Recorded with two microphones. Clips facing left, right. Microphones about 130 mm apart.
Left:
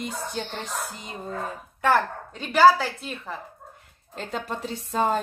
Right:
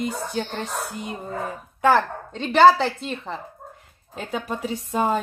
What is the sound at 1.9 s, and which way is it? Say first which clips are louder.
A woman's voice: right 3 dB; 20° right (ahead or behind).